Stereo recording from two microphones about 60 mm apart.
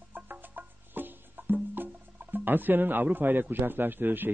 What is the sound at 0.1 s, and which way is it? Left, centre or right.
Music, right.